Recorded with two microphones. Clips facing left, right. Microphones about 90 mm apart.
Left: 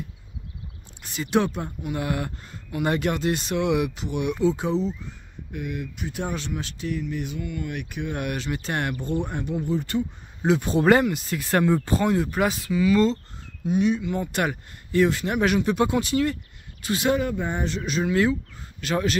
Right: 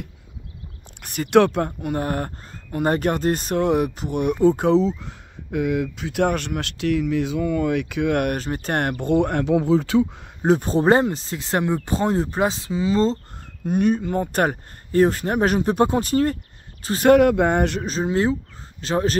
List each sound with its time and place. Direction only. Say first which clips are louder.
1.0 s speech: right 7 dB; 60° right (ahead or behind)
1.7 s speech: right 4 dB; 45° right (ahead or behind); by 8.3 s 85° right
8.3 s speech: right 4 dB; 45° right (ahead or behind)
9.1 s speech: right 12 dB; 80° right
10.4 s speech: right 3 dB; 40° right (ahead or behind); by 12.0 s 20° right (ahead or behind)
12.0 s speech: right 2 dB; 30° right (ahead or behind)
13.7 s speech: right 2 dB; 50° right (ahead or behind)
17.1 s speech: right 13 dB; 75° right (ahead or behind)
17.8 s speech: right 1 dB; 30° right (ahead or behind)